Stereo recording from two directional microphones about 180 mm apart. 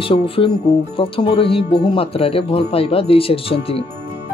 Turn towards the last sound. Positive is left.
turn(degrees=30)  # may be behind; listen again after turning